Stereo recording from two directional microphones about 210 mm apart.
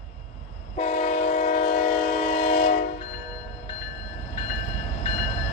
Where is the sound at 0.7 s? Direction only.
35° left (ahead or behind).